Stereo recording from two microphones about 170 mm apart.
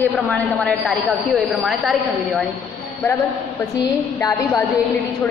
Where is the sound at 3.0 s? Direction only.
15° left (ahead or behind).